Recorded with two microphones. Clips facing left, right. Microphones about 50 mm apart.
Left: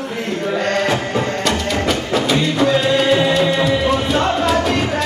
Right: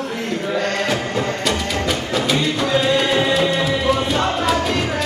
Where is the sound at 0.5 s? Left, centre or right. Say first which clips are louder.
Left 3 dB; centre.